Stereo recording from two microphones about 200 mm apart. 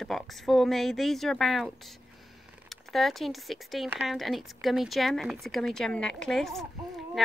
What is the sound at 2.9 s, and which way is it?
Speech, centre (ahead or behind).